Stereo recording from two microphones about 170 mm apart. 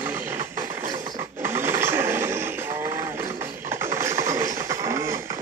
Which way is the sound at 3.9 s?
15° right (ahead or behind).